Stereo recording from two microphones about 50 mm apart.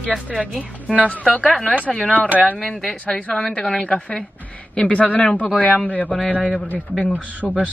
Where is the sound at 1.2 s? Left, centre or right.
Centre.